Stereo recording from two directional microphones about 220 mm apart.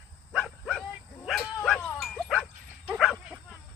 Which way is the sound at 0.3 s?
Centre (ahead or behind).